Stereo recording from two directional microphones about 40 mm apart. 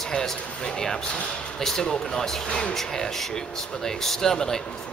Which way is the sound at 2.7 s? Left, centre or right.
Centre.